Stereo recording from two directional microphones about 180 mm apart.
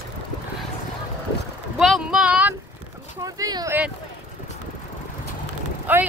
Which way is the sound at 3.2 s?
20° right (ahead or behind).